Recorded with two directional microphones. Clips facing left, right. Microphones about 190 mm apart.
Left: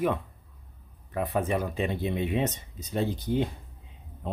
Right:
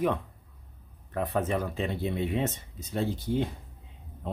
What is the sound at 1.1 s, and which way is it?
Speech, 10° left (ahead or behind).